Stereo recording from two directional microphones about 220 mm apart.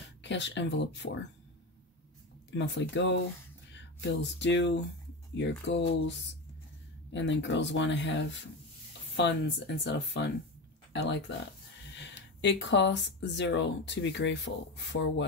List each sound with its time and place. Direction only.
0.2 s speech: 55° left (ahead or behind)
2.5 s speech: 55° left (ahead or behind)